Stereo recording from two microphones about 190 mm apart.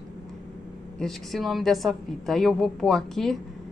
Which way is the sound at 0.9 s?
Centre (ahead or behind).